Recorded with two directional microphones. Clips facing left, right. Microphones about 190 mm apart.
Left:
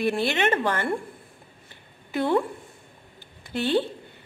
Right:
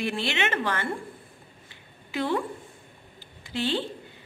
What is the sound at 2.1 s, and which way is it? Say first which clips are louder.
Speech: left 4 dB; 50° left (ahead or behind).